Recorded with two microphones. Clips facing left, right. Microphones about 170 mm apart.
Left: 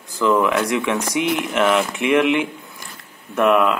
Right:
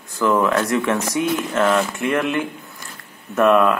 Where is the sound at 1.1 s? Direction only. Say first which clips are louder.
Even; 90° left.